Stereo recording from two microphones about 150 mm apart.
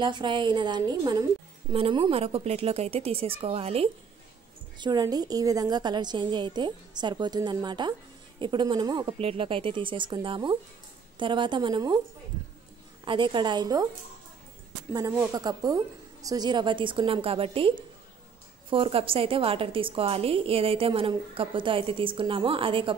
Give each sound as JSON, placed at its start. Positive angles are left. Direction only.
{"t": 0.0, "sound": "a woman's voice", "side_deg": -30}
{"t": 4.7, "sound": "a woman's voice", "side_deg": -30}
{"t": 13.0, "sound": "a woman's voice", "side_deg": -35}
{"t": 14.9, "sound": "a woman's voice", "side_deg": -20}